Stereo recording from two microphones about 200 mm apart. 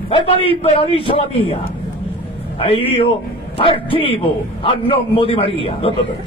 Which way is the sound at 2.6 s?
25° left (ahead or behind).